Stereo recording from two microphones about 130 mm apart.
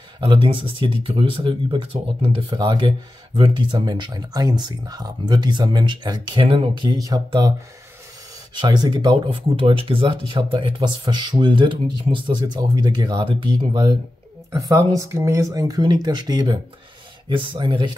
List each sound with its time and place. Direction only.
0.2 s speech: 40° right (ahead or behind)
8.5 s speech: 35° right (ahead or behind)
9.3 s speech: 45° right (ahead or behind)